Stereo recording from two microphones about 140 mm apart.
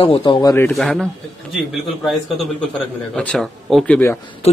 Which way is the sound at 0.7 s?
Centre (ahead or behind).